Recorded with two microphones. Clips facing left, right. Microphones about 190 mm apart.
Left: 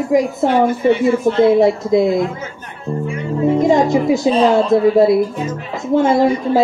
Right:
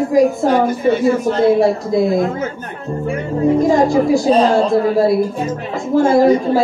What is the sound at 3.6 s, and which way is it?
Speech, 20° left (ahead or behind).